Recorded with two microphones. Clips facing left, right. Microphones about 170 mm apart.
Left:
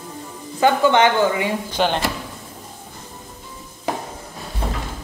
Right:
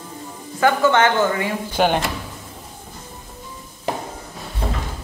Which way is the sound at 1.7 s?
10° right (ahead or behind).